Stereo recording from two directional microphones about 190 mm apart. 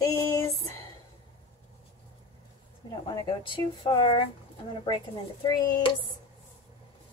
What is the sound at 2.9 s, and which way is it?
Speech, 25° left (ahead or behind).